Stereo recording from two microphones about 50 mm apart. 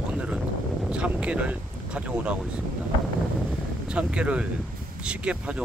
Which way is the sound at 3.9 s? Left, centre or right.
Right.